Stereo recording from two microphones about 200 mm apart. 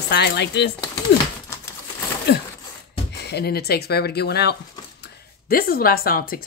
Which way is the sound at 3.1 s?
55° left (ahead or behind).